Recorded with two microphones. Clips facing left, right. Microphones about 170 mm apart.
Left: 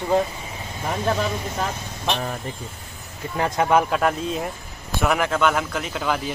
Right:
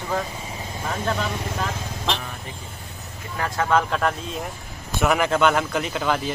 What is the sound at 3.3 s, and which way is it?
Speech, 25° left (ahead or behind).